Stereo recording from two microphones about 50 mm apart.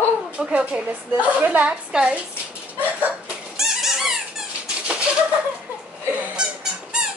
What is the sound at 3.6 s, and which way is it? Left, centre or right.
Squeak, centre.